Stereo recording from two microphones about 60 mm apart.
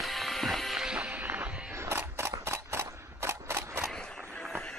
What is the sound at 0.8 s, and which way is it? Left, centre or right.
Music, centre.